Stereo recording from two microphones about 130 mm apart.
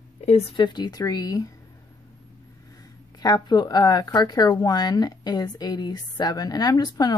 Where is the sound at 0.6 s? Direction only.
35° left (ahead or behind).